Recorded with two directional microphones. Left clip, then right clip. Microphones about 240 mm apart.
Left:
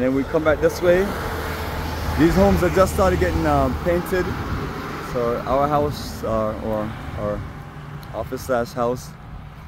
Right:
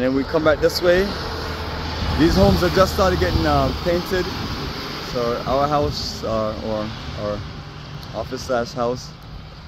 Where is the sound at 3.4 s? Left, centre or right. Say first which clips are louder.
Right 1 dB; centre.